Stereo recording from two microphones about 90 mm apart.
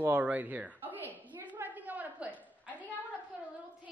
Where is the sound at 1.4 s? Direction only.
20° right (ahead or behind).